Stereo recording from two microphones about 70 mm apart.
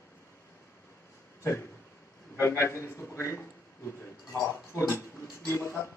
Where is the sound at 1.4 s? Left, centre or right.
Left.